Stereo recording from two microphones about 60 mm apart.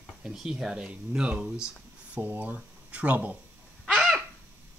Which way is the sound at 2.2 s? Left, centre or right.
Right.